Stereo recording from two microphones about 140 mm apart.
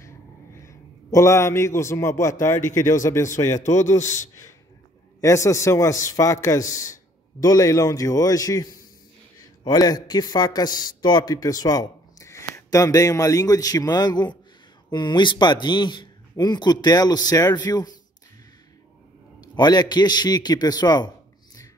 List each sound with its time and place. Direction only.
0.7 s a man's voice: 20° left (ahead or behind)
4.0 s a man's voice: 60° left (ahead or behind)
5.2 s a man's voice: 20° left (ahead or behind)
9.7 s a man's voice: 30° left (ahead or behind)
19.4 s a man's voice: 30° left (ahead or behind)